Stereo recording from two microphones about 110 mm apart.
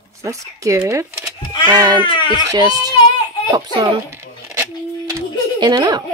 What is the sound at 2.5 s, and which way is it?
Speech, 35° right (ahead or behind).